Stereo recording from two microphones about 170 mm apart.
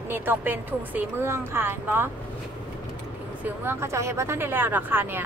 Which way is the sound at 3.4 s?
15° right (ahead or behind).